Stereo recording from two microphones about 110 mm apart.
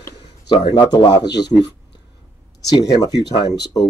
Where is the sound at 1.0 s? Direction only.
40° left (ahead or behind).